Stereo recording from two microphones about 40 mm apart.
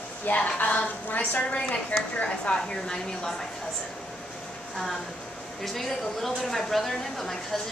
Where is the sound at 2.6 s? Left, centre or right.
Centre.